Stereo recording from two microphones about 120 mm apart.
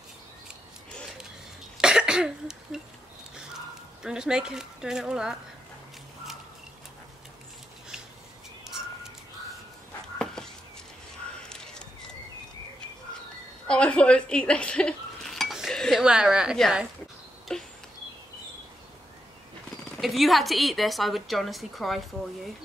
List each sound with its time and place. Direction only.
1.8 s cough: 5° right (ahead or behind)
4.0 s a woman's voice: 5° right (ahead or behind)
10.1 s a sound: 5° left (ahead or behind)
13.7 s speech: 10° left (ahead or behind)
17.5 s a sound: 5° left (ahead or behind)
20.0 s a woman's voice: centre (ahead or behind)